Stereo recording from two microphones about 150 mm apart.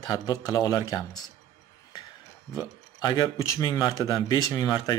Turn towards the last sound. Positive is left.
turn(degrees=25)  # may be behind; listen again after turning